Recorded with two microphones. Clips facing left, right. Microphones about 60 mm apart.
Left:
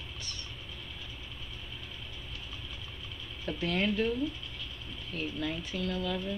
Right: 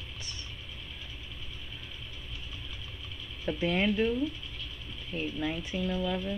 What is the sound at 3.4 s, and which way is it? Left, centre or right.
Speech, centre.